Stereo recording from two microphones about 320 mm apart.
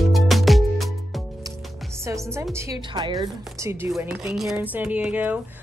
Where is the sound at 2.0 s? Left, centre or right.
Centre.